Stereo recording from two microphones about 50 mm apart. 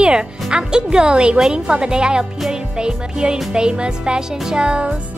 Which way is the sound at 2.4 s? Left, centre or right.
Centre.